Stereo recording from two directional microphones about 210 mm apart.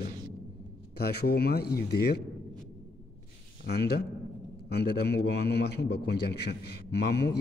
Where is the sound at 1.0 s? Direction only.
50° left (ahead or behind).